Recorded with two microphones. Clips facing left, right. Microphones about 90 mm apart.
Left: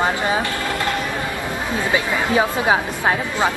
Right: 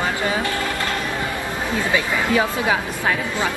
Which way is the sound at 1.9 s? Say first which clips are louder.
Left 1 dB; 25° left (ahead or behind).